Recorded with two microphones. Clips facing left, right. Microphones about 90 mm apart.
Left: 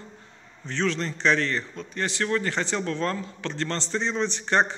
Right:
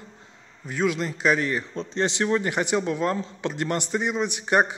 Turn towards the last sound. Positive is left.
turn(degrees=-10)  # may be behind; listen again after turning